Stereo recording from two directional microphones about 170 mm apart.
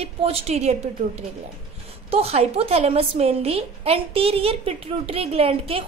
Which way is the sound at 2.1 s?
35° right (ahead or behind).